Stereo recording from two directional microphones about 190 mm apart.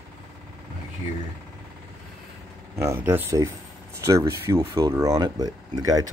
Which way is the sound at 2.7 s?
15° right (ahead or behind).